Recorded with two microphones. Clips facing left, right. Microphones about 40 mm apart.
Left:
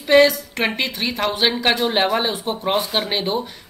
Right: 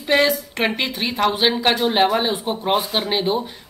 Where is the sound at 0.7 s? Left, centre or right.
Centre.